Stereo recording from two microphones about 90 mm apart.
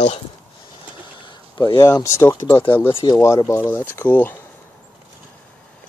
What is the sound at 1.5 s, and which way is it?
Speech, 45° left (ahead or behind).